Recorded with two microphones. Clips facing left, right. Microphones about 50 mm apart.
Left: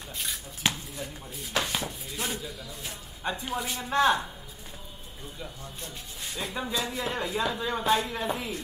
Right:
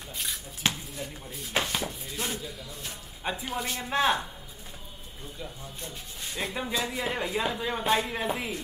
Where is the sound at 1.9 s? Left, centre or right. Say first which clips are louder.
Even; centre.